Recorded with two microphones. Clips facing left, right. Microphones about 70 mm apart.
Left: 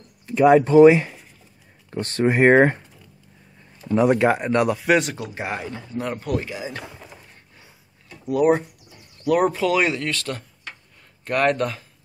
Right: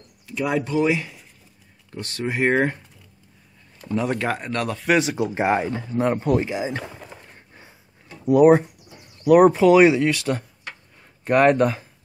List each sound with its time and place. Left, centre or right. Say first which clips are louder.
0.3 s speech: left 9 dB; left
3.9 s speech: left 6 dB; centre
4.7 s speech: left 1 dB; centre
5.1 s speech: right 8 dB; right
7.5 s a sound: right 3 dB; right
9.2 s speech: right 6 dB; centre